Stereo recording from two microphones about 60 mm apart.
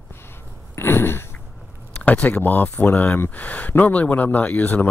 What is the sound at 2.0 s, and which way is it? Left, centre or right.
Speech, left.